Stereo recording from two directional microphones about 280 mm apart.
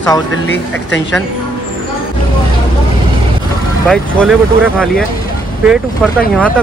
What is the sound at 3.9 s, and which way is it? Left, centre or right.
Speech, centre.